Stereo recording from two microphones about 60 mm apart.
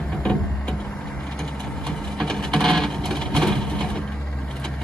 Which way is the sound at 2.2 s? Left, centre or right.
Centre.